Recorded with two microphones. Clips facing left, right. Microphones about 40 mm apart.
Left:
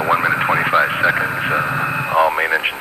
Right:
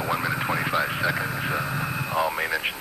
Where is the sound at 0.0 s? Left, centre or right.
Left.